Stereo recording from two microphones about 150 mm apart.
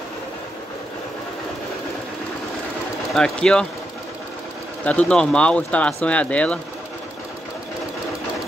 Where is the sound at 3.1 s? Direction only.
5° left (ahead or behind).